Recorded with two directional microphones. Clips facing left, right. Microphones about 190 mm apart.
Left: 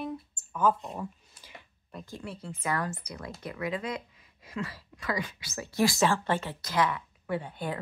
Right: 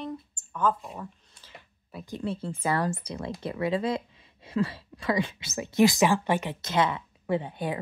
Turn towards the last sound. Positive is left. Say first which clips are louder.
# right 4 dB
turn(degrees=-20)  # may be behind; listen again after turning